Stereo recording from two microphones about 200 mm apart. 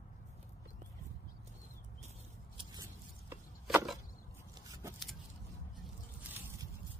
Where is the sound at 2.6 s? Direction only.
20° right (ahead or behind).